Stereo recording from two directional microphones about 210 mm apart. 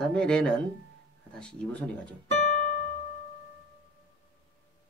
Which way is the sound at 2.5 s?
35° left (ahead or behind).